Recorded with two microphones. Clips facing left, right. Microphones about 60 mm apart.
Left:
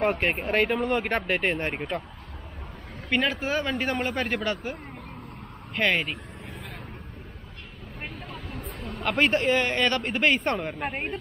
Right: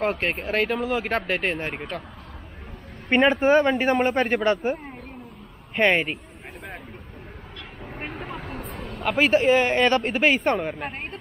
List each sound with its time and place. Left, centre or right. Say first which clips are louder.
0.0 s speech: even; centre
3.1 s a man's voice: right 8 dB; right
4.0 s speech: right 6 dB; centre
5.8 s speech: right 5 dB; right
8.0 s vehicle: right 4 dB; right
9.0 s speech: right 4 dB; centre